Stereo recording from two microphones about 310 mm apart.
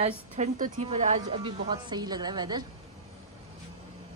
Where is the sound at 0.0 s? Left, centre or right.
Right.